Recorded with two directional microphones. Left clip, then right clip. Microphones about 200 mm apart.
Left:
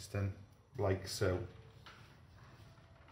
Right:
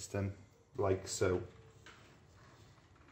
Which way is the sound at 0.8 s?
20° right (ahead or behind).